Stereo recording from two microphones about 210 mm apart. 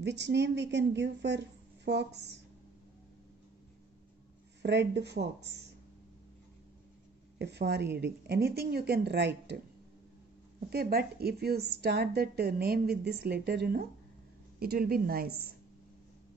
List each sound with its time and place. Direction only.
0.0 s a woman's voice: 55° right (ahead or behind)
4.6 s a woman's voice: 55° right (ahead or behind)
7.3 s a woman's voice: 50° right (ahead or behind)
10.7 s a woman's voice: 45° right (ahead or behind)